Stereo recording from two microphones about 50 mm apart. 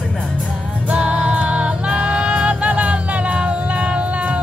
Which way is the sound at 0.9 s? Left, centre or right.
Right.